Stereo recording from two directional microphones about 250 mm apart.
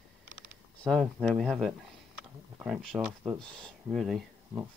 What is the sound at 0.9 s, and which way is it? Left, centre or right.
Speech, centre.